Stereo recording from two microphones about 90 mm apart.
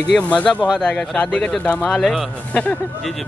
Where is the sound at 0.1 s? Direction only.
10° left (ahead or behind).